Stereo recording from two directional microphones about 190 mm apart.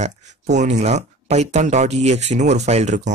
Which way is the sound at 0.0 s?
40° right (ahead or behind).